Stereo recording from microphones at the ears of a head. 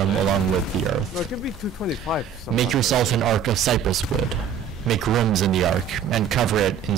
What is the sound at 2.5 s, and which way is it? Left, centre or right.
Speech, right.